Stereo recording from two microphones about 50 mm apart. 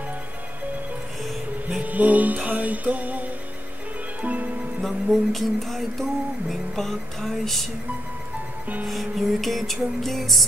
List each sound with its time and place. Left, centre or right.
1.8 s music: right
4.8 s music: centre
8.8 s music: centre